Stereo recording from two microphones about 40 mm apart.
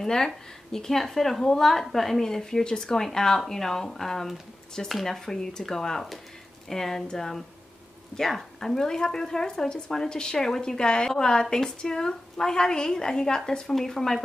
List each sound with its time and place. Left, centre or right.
0.0 s a woman's voice: centre